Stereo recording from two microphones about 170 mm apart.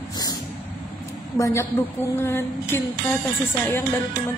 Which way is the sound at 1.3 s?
20° left (ahead or behind).